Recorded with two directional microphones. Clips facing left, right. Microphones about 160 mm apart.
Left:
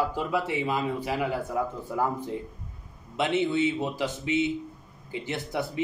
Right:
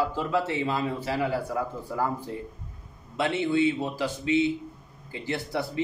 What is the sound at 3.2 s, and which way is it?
A man's voice, 20° left (ahead or behind).